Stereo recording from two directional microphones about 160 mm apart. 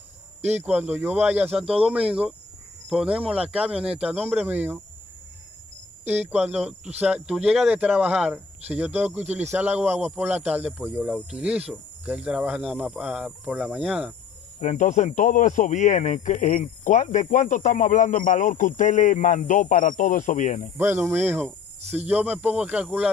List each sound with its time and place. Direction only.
0.6 s speech: 10° right (ahead or behind)
6.0 s speech: 10° right (ahead or behind)
14.6 s speech: 50° left (ahead or behind)
20.7 s speech: 15° right (ahead or behind)